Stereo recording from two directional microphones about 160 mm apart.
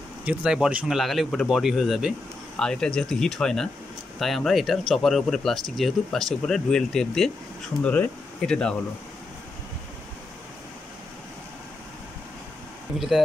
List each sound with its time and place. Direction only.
0.2 s speech: 5° right (ahead or behind)